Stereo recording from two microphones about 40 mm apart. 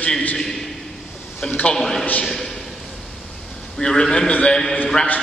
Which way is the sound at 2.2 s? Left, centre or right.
Centre.